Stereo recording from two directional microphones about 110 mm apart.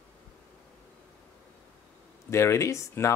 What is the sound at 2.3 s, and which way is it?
Speech, 25° left (ahead or behind).